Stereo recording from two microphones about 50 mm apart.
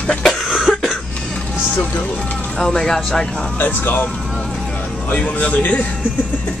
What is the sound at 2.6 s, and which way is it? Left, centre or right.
Speech, centre.